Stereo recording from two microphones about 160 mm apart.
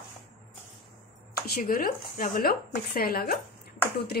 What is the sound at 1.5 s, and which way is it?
Speech, 65° left (ahead or behind).